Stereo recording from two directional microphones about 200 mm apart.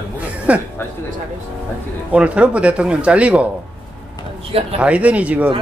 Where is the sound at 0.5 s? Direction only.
5° right (ahead or behind).